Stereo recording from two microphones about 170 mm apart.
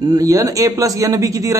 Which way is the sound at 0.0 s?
20° right (ahead or behind).